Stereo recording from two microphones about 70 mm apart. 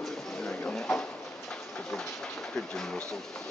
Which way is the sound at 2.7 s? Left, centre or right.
Centre.